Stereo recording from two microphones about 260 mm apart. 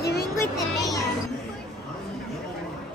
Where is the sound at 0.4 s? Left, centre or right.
Centre.